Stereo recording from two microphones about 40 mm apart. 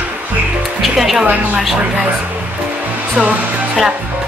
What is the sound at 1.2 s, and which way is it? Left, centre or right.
Speech, right.